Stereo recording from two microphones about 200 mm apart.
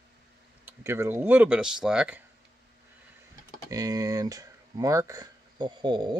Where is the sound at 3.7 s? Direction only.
15° right (ahead or behind).